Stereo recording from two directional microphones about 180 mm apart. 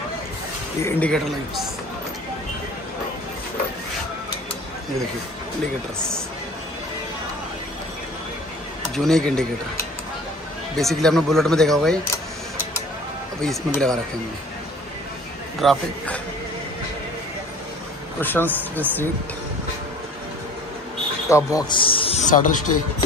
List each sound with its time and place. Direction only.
0.8 s speech: 10° left (ahead or behind)
8.9 s speech: centre (ahead or behind)
10.8 s speech: centre (ahead or behind)
13.4 s speech: 5° left (ahead or behind)
15.6 s speech: centre (ahead or behind)
18.2 s speech: 10° left (ahead or behind)
21.3 s a man's voice: 15° left (ahead or behind)
22.2 s speech: 45° left (ahead or behind)